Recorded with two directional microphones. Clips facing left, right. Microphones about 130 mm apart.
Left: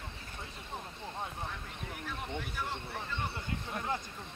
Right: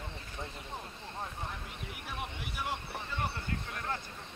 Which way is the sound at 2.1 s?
15° right (ahead or behind).